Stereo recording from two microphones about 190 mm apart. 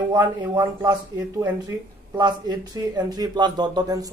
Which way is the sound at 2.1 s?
20° right (ahead or behind).